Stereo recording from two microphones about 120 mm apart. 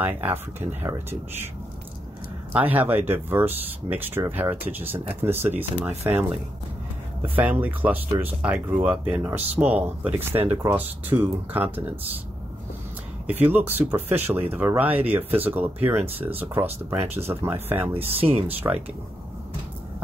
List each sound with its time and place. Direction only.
0.0 s speech: 15° right (ahead or behind)
2.5 s speech: 15° right (ahead or behind)
7.3 s speech: 15° right (ahead or behind)
13.3 s speech: 15° right (ahead or behind)
17.9 s speech: 55° right (ahead or behind)
18.6 s speech: 25° right (ahead or behind)